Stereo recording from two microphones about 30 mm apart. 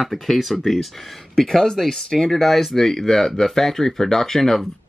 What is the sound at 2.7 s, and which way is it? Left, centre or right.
Speech, centre.